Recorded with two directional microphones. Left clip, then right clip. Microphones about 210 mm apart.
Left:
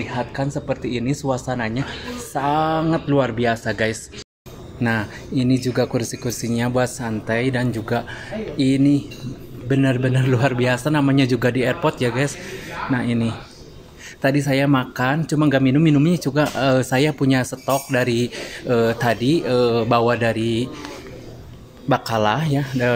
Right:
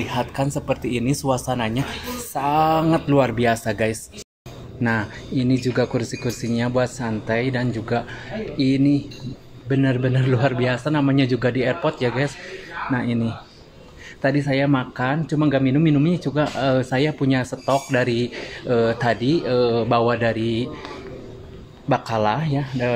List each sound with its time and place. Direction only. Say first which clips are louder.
0.0 s a woman's voice: right 1 dB; 10° right (ahead or behind)
4.7 s speech: even; 5° left (ahead or behind)
21.8 s speech: left 1 dB; 15° left (ahead or behind)